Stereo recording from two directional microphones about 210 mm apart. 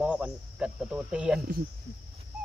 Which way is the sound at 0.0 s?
5° right (ahead or behind).